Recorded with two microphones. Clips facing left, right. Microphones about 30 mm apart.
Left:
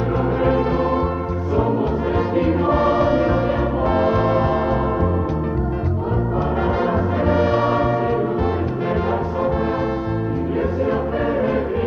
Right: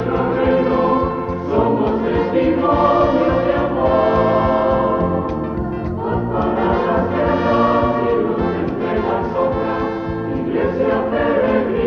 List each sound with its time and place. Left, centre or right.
0.1 s music: centre
1.5 s choir: centre
6.3 s music: centre
10.5 s choir: centre